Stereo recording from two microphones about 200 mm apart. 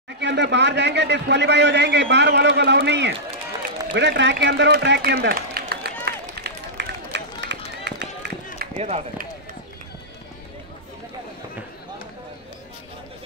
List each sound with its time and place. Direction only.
0.2 s a man's voice: 60° right (ahead or behind)
6.0 s run: 55° right (ahead or behind)
8.7 s speech: 35° right (ahead or behind)